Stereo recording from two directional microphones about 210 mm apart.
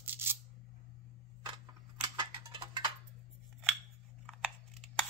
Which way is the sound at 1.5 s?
20° right (ahead or behind).